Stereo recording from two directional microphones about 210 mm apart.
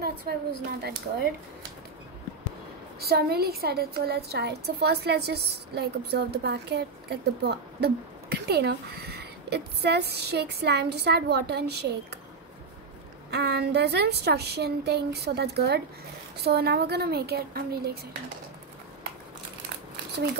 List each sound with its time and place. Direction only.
0.0 s a woman's voice: 50° right (ahead or behind)
3.0 s a woman's voice: 50° right (ahead or behind)
13.3 s a woman's voice: 50° right (ahead or behind)